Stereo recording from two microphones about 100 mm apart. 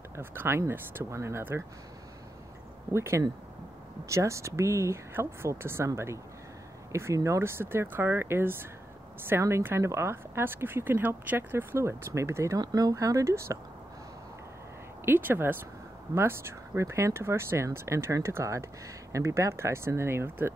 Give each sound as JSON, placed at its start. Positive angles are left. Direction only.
{"t": 0.1, "sound": "a woman's voice", "side_deg": -20}
{"t": 2.9, "sound": "a woman's voice", "side_deg": -25}
{"t": 12.5, "sound": "speech", "side_deg": -40}
{"t": 15.0, "sound": "a woman's voice", "side_deg": -20}